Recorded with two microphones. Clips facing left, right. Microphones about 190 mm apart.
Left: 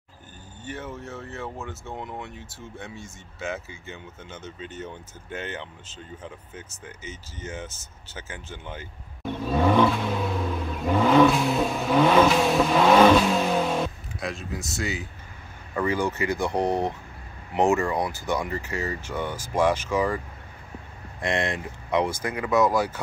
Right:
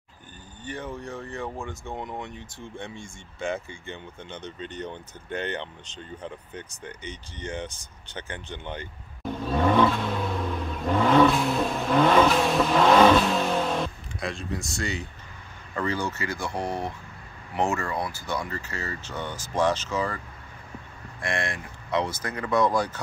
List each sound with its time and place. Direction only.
2.0 s speech: 5° left (ahead or behind)
15.7 s speech: 15° left (ahead or behind)
21.2 s speech: 20° left (ahead or behind)